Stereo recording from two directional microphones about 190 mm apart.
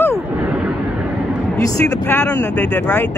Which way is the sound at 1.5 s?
15° left (ahead or behind).